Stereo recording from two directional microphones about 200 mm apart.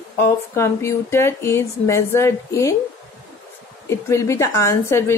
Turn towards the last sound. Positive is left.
turn(degrees=15)  # may be behind; listen again after turning